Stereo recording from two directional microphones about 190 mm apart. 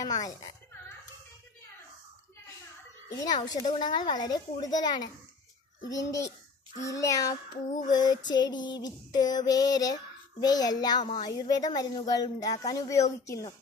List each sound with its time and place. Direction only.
0.0 s speech: 20° left (ahead or behind)
3.3 s speech: 20° left (ahead or behind)
5.9 s child singing: 15° left (ahead or behind)
7.9 s speech: 20° left (ahead or behind)